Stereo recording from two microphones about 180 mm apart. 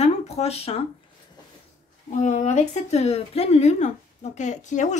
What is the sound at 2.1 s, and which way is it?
A woman's voice, 40° left (ahead or behind).